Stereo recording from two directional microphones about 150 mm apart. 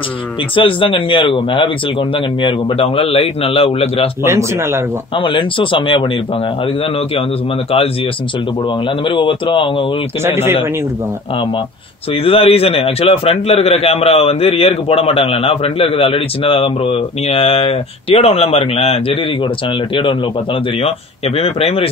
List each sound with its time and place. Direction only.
0.6 s a man's voice: 35° left (ahead or behind)
4.2 s speech: 15° right (ahead or behind)
5.1 s a man's voice: 35° left (ahead or behind)
9.0 s a man's voice: 35° left (ahead or behind)
10.2 s speech: 15° right (ahead or behind)
12.2 s a man's voice: 40° left (ahead or behind)
21.4 s a man's voice: 40° left (ahead or behind)